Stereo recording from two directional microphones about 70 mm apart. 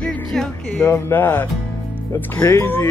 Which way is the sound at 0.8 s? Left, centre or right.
Left.